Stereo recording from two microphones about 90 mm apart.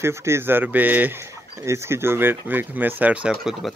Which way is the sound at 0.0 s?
30° right (ahead or behind).